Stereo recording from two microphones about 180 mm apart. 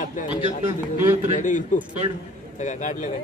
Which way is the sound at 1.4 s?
45° left (ahead or behind).